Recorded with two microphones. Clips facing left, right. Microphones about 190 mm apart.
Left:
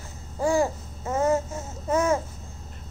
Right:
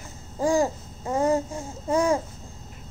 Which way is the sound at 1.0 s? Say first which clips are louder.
Even; 35° right (ahead or behind).